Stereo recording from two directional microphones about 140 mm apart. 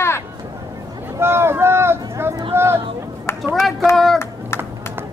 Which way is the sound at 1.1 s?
15° right (ahead or behind).